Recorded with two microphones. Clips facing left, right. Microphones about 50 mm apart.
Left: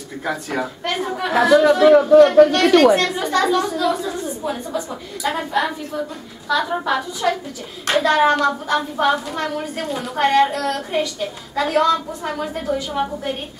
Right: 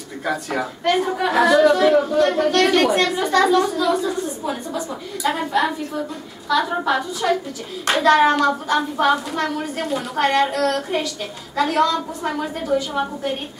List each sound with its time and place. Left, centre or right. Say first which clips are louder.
0.2 s a woman's voice: even; centre